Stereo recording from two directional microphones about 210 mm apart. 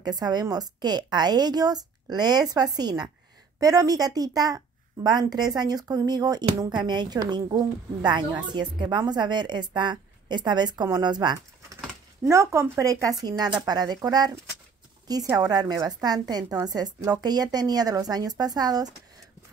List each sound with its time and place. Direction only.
0.0 s a woman's voice: 20° right (ahead or behind)